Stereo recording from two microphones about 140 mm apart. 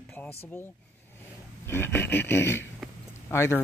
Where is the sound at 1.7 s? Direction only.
15° left (ahead or behind).